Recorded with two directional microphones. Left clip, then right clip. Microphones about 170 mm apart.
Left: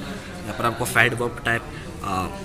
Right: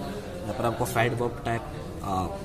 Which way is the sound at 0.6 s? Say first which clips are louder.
Left 5 dB; 15° right (ahead or behind).